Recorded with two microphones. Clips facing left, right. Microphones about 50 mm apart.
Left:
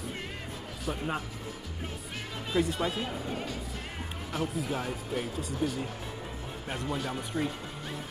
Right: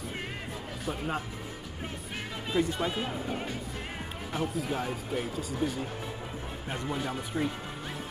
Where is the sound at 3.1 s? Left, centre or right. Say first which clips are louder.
Right 1 dB; right.